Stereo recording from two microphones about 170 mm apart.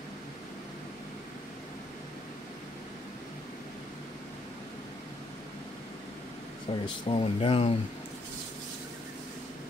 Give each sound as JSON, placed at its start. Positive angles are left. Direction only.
{"t": 6.7, "sound": "speech", "side_deg": 30}